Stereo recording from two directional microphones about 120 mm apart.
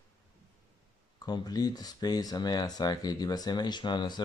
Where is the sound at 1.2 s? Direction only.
35° left (ahead or behind).